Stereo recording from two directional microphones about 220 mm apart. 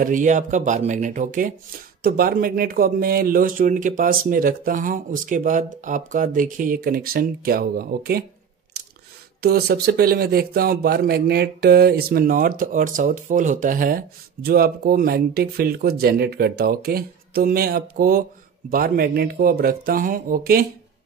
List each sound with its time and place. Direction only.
0.0 s speech: 35° right (ahead or behind)
9.4 s speech: 45° right (ahead or behind)